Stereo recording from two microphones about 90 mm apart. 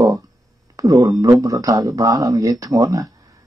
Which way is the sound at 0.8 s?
40° right (ahead or behind).